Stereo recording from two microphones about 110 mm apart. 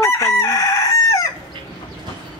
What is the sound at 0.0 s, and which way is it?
Chicken, 25° left (ahead or behind).